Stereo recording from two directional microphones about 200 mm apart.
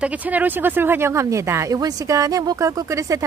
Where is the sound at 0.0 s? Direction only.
5° right (ahead or behind).